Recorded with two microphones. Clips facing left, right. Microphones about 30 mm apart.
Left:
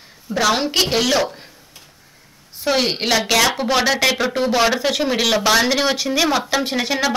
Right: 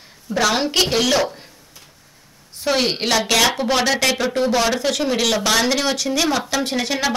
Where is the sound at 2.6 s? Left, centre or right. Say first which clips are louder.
Left 1 dB; centre.